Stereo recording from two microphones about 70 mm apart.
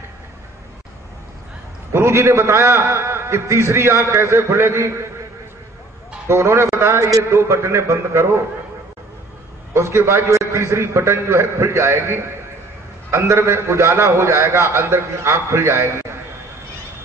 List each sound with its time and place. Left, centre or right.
1.9 s a man's voice: right
6.2 s a man's voice: right
9.8 s a man's voice: right